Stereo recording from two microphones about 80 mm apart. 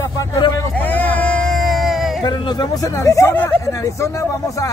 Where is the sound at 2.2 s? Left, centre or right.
Left.